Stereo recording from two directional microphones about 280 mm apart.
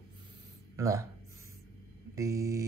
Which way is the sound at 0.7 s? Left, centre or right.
Centre.